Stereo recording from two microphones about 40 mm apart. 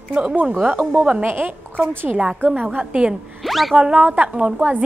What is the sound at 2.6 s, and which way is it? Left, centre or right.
Speech, right.